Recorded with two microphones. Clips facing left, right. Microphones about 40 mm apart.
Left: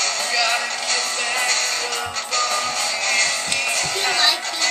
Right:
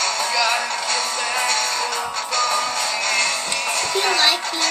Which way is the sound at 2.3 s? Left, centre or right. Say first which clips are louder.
Right 1 dB; centre.